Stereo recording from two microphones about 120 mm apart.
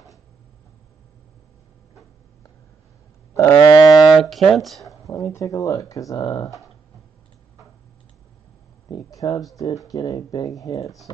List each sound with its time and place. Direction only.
3.3 s cattle: 25° left (ahead or behind)
4.0 s a sound: centre (ahead or behind)
4.8 s speech: 25° left (ahead or behind)
8.8 s speech: 35° left (ahead or behind)